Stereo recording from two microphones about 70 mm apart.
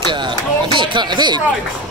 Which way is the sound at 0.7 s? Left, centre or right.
Right.